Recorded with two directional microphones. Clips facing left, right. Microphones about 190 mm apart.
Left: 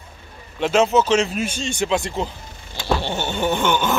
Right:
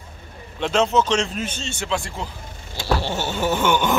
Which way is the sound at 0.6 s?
5° left (ahead or behind).